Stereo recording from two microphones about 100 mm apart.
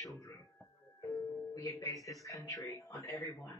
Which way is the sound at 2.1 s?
35° left (ahead or behind).